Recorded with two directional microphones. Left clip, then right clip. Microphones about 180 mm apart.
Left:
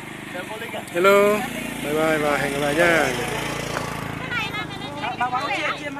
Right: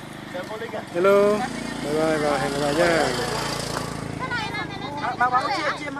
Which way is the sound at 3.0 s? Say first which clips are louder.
Even; 20° left (ahead or behind).